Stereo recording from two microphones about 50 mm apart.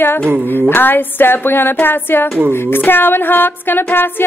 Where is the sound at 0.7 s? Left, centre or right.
Left.